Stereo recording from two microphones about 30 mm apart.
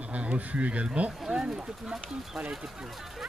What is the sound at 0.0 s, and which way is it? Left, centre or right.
Speech, right.